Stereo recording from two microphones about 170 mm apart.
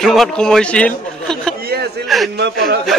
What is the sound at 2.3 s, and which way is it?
Speech, 80° right.